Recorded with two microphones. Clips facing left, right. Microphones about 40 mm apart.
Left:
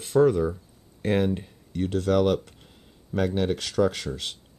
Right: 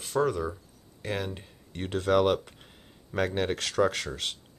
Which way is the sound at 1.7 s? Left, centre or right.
Right.